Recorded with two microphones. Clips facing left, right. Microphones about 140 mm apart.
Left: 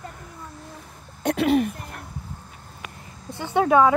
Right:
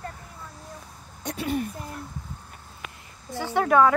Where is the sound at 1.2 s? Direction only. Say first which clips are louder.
Left 8 dB; 70° left (ahead or behind).